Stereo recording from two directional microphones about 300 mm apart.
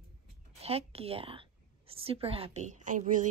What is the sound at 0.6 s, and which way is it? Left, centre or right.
A woman's voice, centre.